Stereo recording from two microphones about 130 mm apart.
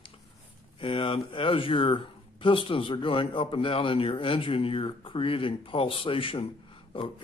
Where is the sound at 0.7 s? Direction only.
40° left (ahead or behind).